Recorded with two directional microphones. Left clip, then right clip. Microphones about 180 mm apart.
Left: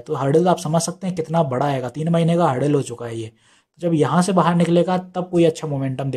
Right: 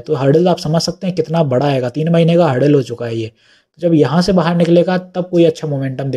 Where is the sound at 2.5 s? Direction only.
Centre (ahead or behind).